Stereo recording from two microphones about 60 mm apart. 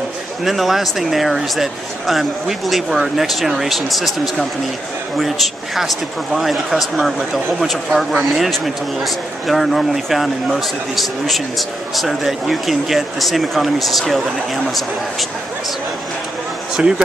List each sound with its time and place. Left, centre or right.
0.4 s a man's voice: centre
16.8 s speech: centre